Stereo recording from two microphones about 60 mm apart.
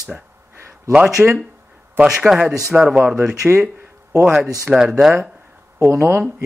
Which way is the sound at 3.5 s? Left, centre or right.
Right.